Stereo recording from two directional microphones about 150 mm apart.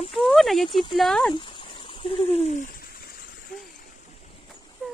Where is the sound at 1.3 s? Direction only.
35° left (ahead or behind); by 3.2 s 85° left.